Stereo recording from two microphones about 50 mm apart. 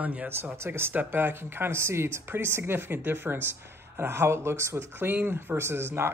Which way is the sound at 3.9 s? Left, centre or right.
Right.